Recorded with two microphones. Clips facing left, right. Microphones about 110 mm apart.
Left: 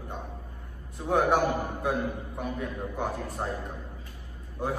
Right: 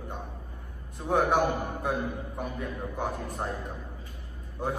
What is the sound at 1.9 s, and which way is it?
A man's voice, 15° right (ahead or behind).